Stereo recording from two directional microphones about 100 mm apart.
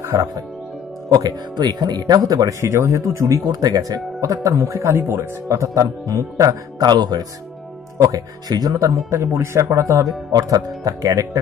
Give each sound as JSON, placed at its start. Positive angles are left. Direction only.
{"t": 0.0, "sound": "speech", "side_deg": -30}
{"t": 1.1, "sound": "speech", "side_deg": -40}
{"t": 4.7, "sound": "speech", "side_deg": -25}